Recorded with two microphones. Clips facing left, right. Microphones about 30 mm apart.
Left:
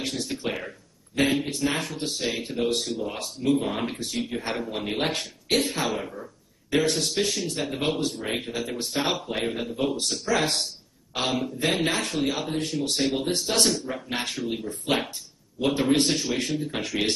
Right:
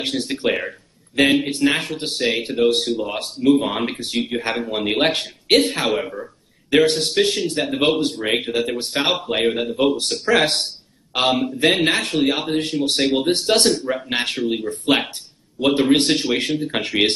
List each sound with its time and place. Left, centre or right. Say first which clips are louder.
0.0 s speech: right 8 dB; right